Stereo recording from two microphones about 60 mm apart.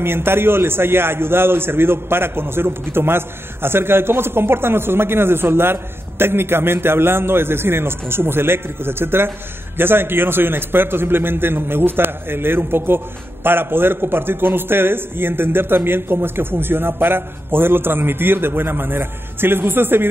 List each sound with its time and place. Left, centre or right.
0.0 s a man's voice: right